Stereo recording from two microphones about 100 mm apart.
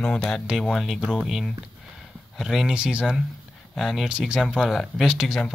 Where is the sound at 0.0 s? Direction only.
5° left (ahead or behind).